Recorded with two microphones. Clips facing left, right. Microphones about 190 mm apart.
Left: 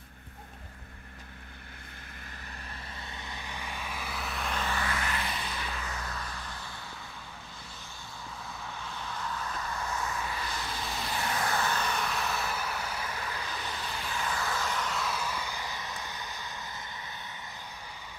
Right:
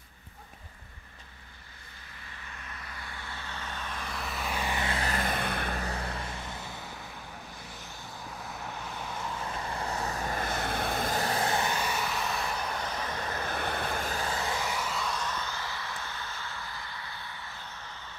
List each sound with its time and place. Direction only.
3.1 s vehicle: 20° left (ahead or behind); by 4.9 s 15° right (ahead or behind)
4.9 s vehicle: 40° right (ahead or behind)
5.9 s vehicle: 30° right (ahead or behind)
8.5 s vehicle: 15° right (ahead or behind); by 13.0 s 5° left (ahead or behind)
13.3 s vehicle: 55° right (ahead or behind)
14.3 s vehicle: 20° right (ahead or behind); by 17.0 s 20° left (ahead or behind)